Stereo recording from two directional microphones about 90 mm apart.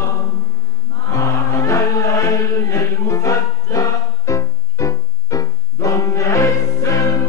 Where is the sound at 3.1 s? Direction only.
35° left (ahead or behind).